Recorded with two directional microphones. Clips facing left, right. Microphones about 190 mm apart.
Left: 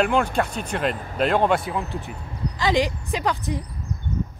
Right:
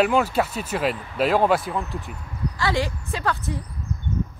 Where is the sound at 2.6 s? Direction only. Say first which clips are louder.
Left 3 dB; 15° left (ahead or behind).